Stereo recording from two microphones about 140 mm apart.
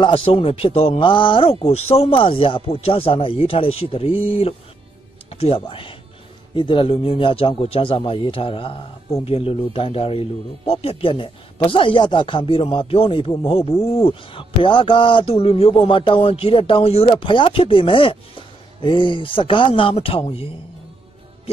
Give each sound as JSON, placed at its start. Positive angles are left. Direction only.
{"t": 0.0, "sound": "speech", "side_deg": 40}